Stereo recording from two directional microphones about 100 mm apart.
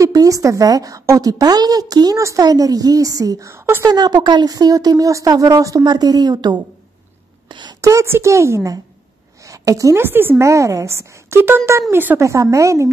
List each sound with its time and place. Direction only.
0.0 s a woman's voice: 35° right (ahead or behind)
3.8 s a woman's voice: 40° right (ahead or behind)
7.4 s a sound: 50° right (ahead or behind)
7.8 s speech: 30° right (ahead or behind)
9.4 s a sound: 35° right (ahead or behind)
10.4 s speech: 30° right (ahead or behind)
12.3 s a woman's voice: 30° right (ahead or behind)